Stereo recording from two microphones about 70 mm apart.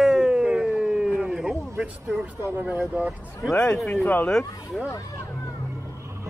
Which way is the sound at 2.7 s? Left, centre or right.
Right.